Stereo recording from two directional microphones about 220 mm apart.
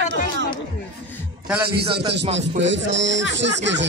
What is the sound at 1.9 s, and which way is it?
Speech, 25° right (ahead or behind).